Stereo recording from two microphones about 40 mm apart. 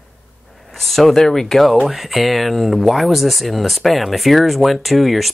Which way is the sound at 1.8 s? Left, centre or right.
Centre.